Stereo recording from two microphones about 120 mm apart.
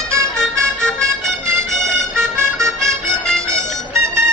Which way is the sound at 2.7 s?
5° left (ahead or behind).